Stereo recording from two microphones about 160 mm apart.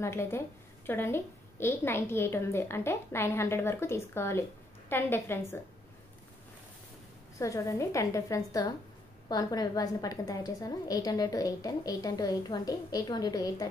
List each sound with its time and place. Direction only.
0.0 s a woman's voice: 15° left (ahead or behind)
7.3 s a woman's voice: 20° left (ahead or behind)